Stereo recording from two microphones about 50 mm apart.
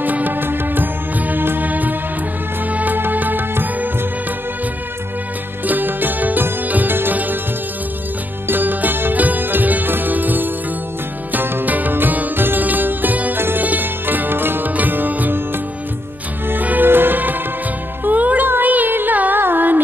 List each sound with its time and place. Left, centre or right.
0.0 s music: right
5.7 s music: right
8.5 s music: right
11.3 s music: right
11.6 s music: right
13.4 s music: right
13.7 s sitar: right
14.7 s music: right